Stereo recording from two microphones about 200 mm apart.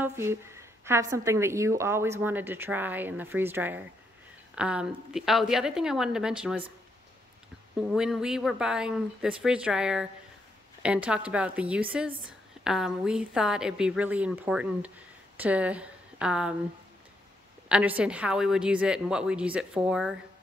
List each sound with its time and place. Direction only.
0.0 s a woman's voice: 10° right (ahead or behind)
7.7 s a woman's voice: 5° right (ahead or behind)
17.6 s a woman's voice: 5° right (ahead or behind)